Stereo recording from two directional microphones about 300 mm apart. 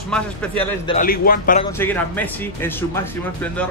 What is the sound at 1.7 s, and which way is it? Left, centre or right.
Speech, centre.